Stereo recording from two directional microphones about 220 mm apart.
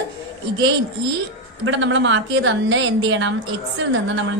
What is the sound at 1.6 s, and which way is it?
A woman's voice, 60° right (ahead or behind).